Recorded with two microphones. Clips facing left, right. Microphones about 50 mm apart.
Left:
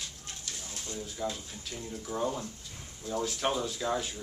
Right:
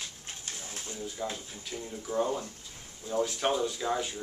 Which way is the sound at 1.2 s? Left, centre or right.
Centre.